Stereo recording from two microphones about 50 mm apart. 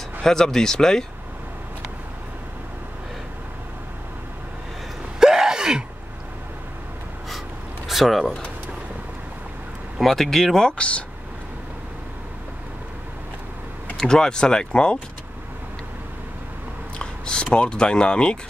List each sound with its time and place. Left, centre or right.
0.2 s speech: centre
5.2 s gasp: centre
7.9 s speech: centre
9.9 s speech: centre; by 11.1 s left
13.9 s speech: centre
17.0 s speech: centre